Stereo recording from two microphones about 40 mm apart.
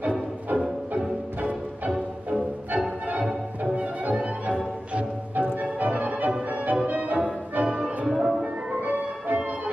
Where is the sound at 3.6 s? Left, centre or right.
Right.